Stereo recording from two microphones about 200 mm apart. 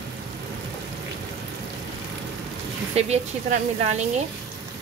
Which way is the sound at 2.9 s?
35° right (ahead or behind).